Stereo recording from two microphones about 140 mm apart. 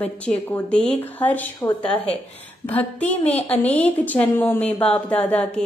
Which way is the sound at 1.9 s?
45° left (ahead or behind).